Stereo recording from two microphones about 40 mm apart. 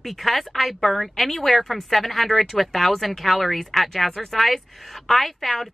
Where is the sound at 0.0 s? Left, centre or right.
Centre.